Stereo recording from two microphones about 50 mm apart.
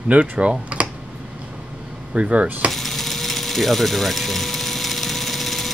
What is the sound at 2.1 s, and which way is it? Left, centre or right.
Speech, right.